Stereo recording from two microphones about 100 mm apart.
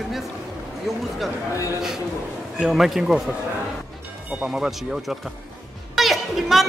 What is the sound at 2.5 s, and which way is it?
Speech, 5° right (ahead or behind).